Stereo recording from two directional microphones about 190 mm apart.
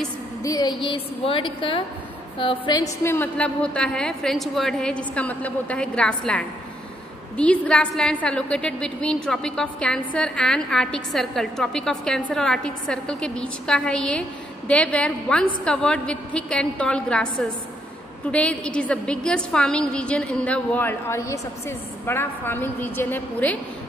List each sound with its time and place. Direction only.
0.4 s a woman's voice: 20° left (ahead or behind); by 17.3 s 5° left (ahead or behind)
18.3 s a woman's voice: 5° left (ahead or behind)